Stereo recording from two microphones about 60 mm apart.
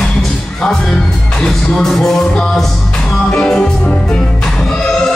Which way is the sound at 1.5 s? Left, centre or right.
Centre.